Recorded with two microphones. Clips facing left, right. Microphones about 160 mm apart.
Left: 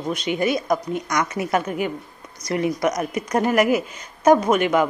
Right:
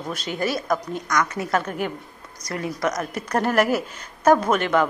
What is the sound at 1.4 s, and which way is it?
Speech, 10° left (ahead or behind).